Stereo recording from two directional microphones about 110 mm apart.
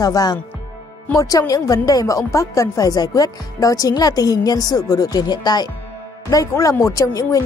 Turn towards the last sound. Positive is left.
turn(degrees=30)  # may be behind; listen again after turning